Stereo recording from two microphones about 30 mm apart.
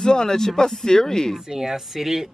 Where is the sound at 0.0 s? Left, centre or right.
Left.